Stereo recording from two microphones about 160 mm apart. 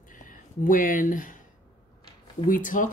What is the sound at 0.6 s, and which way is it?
Speech, 55° left (ahead or behind).